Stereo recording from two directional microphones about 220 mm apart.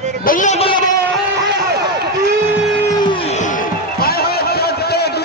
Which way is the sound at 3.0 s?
25° left (ahead or behind).